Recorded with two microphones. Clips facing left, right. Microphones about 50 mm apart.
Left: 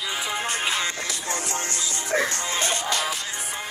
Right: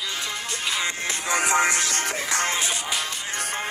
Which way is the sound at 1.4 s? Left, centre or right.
Right.